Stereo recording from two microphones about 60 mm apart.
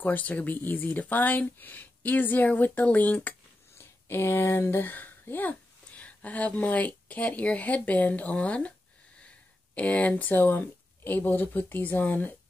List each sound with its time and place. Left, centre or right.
0.0 s speech: left
3.7 s speech: left
9.8 s speech: left